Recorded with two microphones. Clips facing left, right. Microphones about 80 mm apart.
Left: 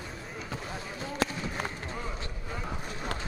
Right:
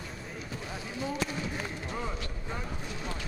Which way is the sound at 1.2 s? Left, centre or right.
Left.